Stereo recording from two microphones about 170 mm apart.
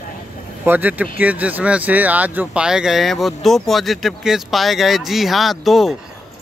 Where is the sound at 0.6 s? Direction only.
10° right (ahead or behind).